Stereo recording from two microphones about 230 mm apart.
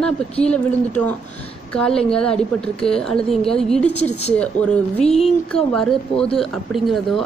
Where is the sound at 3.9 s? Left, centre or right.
Left.